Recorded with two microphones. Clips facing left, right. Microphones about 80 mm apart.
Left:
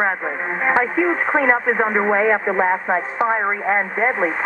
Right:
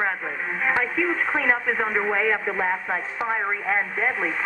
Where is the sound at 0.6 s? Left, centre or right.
Left.